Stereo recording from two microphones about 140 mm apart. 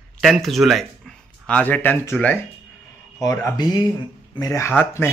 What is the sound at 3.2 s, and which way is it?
Speech, 20° left (ahead or behind).